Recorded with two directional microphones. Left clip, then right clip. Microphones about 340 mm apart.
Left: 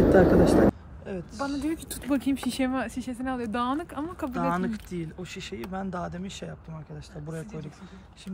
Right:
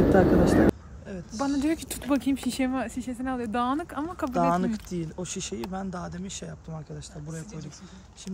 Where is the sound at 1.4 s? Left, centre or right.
Right.